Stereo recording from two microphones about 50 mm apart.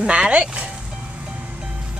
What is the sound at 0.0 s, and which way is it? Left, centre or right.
Speech, right.